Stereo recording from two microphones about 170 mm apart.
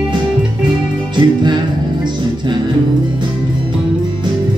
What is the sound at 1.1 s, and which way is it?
Music, 25° right (ahead or behind).